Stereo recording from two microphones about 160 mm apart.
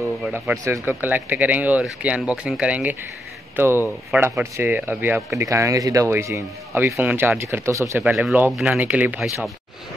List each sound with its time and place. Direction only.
0.3 s speech: 15° right (ahead or behind)
8.0 s speech: 5° right (ahead or behind)